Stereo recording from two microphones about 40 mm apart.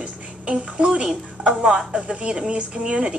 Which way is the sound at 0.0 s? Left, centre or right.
Right.